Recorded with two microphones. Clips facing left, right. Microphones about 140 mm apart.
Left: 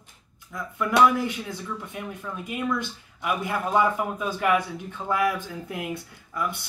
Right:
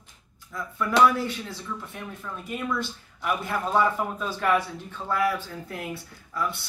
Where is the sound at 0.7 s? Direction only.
15° left (ahead or behind).